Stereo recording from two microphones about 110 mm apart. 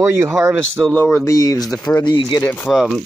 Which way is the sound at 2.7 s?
Centre (ahead or behind).